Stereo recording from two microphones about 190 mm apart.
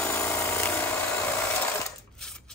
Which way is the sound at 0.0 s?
10° left (ahead or behind).